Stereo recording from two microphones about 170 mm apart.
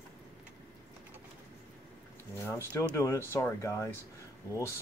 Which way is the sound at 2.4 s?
15° left (ahead or behind).